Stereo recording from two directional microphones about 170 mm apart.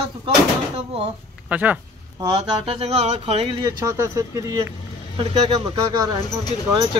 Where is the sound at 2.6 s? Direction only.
35° right (ahead or behind).